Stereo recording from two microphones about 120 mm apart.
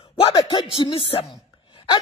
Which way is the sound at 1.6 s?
45° left (ahead or behind).